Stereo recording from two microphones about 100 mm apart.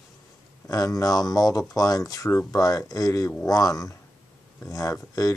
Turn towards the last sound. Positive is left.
turn(degrees=35)  # may be behind; listen again after turning